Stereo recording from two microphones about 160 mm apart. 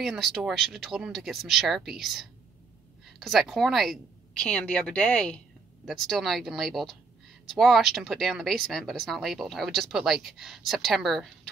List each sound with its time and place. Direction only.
0.0 s speech: centre (ahead or behind)